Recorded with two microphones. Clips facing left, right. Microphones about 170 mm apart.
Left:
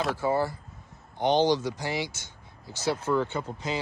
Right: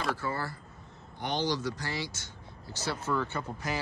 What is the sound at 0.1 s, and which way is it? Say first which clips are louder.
Speech: left 7 dB; 15° left (ahead or behind).